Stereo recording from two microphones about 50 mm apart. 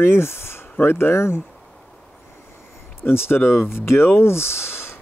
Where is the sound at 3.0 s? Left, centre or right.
Left.